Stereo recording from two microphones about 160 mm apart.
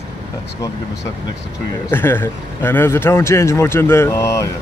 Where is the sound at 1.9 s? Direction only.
15° left (ahead or behind).